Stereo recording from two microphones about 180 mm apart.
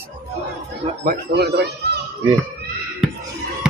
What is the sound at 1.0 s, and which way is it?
Speech, 60° right (ahead or behind).